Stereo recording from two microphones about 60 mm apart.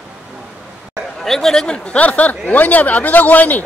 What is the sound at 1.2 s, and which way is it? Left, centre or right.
Speech, centre.